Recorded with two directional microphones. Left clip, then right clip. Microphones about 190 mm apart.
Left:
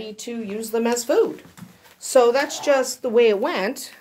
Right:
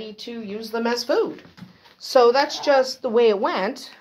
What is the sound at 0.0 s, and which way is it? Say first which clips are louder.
Speech: left 1 dB; 20° left (ahead or behind).